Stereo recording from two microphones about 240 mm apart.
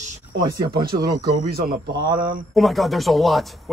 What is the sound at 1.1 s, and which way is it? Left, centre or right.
Speech, right.